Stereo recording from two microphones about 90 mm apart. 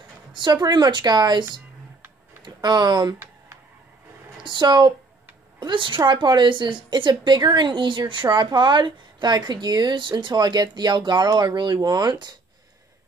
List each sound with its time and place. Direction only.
0.3 s a woman's voice: 55° right (ahead or behind)
4.4 s speech: 60° right (ahead or behind)
5.6 s a woman's voice: 65° right (ahead or behind)